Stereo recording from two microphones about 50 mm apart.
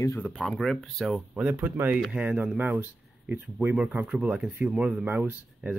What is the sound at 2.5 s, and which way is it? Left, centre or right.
Speech, right.